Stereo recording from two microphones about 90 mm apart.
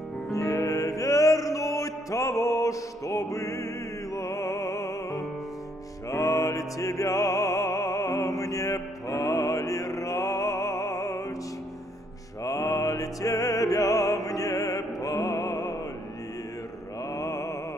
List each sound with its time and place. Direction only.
0.3 s music: 40° left (ahead or behind)
12.4 s music: 40° left (ahead or behind)
17.1 s mantra: 40° left (ahead or behind)